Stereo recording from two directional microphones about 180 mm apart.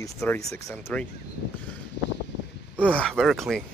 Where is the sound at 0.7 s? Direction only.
5° left (ahead or behind).